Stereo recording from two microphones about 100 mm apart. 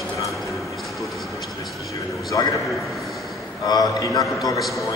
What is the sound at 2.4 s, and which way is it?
Speech, 40° left (ahead or behind).